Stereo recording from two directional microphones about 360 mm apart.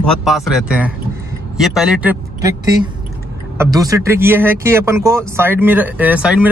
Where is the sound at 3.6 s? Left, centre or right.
Centre.